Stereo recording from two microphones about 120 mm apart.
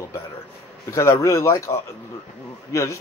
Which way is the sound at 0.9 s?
25° left (ahead or behind).